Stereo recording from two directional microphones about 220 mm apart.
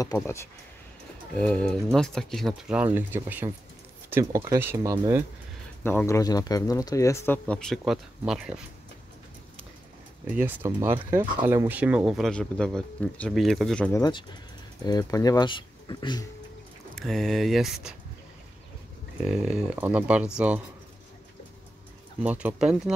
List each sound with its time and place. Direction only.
0.0 s speech: 15° left (ahead or behind); by 5.2 s 15° right (ahead or behind)
5.9 s speech: 10° left (ahead or behind)
10.2 s speech: 5° right (ahead or behind)
14.9 s speech: 15° left (ahead or behind)
16.9 s speech: centre (ahead or behind)
19.2 s speech: 5° right (ahead or behind)
22.2 s speech: 5° right (ahead or behind)